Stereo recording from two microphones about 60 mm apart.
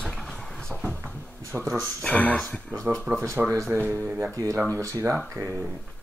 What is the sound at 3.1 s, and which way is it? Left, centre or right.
Speech, right.